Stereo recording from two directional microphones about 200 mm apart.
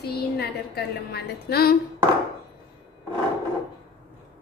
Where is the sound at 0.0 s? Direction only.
55° left (ahead or behind).